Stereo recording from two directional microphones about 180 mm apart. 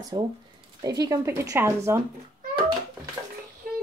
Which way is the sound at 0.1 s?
25° right (ahead or behind).